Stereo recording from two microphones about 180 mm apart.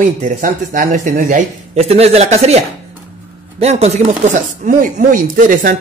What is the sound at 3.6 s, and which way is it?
Speech, 35° right (ahead or behind).